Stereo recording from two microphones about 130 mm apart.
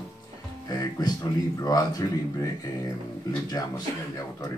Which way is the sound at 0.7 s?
30° left (ahead or behind).